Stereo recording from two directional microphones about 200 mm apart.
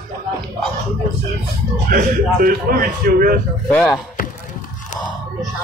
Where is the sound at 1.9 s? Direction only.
45° right (ahead or behind).